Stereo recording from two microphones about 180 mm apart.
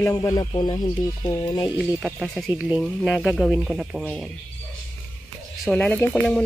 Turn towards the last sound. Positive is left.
turn(degrees=5)  # may be behind; listen again after turning